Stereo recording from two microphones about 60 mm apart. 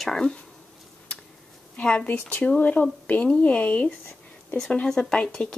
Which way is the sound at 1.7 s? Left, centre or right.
Centre.